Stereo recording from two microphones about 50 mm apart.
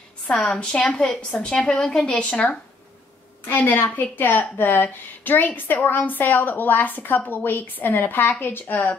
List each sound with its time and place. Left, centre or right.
0.6 s a woman's voice: left
3.4 s a woman's voice: left